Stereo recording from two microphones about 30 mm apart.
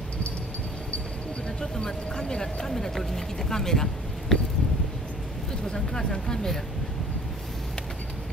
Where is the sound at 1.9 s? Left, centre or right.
Left.